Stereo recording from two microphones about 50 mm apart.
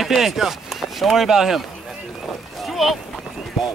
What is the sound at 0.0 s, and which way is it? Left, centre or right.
Speech, centre.